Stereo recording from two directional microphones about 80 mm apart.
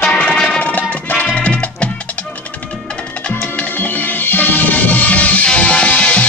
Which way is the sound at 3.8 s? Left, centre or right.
Left.